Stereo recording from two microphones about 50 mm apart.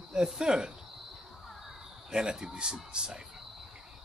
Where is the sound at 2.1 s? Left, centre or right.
Centre.